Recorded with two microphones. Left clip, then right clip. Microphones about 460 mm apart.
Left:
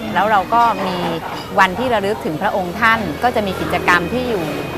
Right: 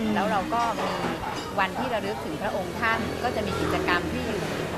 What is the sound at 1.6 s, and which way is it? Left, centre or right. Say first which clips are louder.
A woman's voice: left 13 dB; left.